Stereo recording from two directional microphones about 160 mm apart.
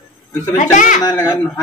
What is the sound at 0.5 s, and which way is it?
Speech, 50° left (ahead or behind).